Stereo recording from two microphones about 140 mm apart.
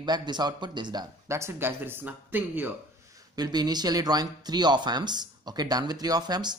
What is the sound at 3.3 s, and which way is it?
Speech, 30° right (ahead or behind).